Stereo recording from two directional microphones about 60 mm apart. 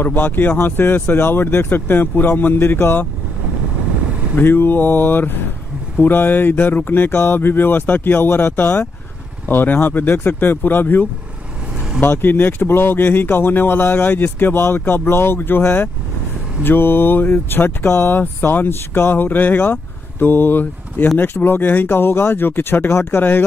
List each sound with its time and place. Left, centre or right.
0.0 s speech: left
4.4 s speech: left